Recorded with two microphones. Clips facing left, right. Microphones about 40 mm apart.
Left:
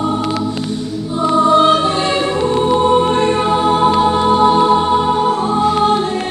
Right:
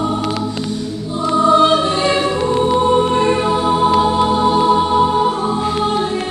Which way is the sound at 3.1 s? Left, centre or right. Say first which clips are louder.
Left 1 dB; left.